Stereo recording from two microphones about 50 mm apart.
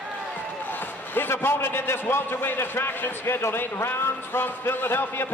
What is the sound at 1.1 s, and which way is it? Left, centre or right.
A man's voice, left.